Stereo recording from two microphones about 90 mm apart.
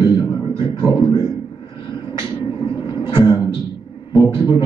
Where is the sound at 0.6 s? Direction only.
65° left (ahead or behind).